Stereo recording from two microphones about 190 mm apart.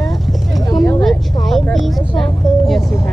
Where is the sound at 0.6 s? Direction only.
20° left (ahead or behind).